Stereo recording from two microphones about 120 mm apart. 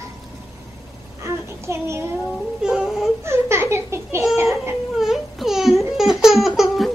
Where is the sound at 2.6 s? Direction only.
5° right (ahead or behind).